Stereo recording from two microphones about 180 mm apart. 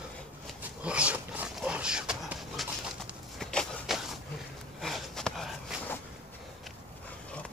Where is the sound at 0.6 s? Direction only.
5° right (ahead or behind).